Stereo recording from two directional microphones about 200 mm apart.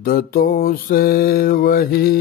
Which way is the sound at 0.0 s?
50° left (ahead or behind).